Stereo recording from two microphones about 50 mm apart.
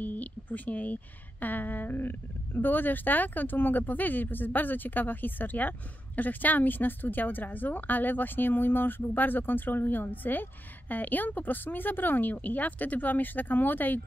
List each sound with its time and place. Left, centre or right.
0.0 s speech: left